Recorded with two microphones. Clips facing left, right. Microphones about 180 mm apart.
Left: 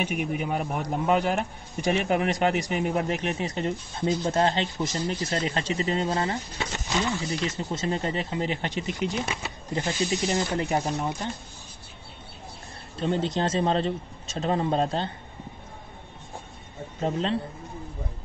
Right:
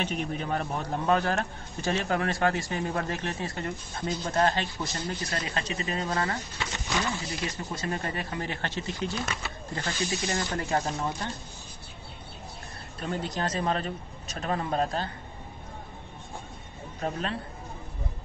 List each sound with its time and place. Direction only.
0.0 s a man's voice: 10° left (ahead or behind)
13.0 s speech: 25° left (ahead or behind)
17.0 s speech: 25° left (ahead or behind)